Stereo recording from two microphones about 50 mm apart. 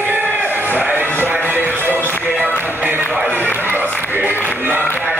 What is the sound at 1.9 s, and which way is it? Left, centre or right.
Music, left.